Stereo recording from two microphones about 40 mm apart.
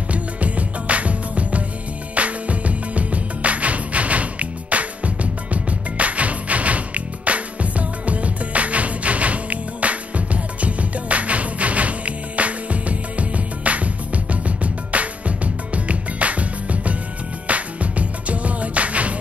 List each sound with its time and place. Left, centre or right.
0.1 s music: right